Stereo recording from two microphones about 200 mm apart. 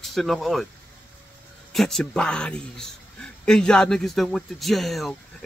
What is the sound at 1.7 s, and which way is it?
A man's voice, centre (ahead or behind).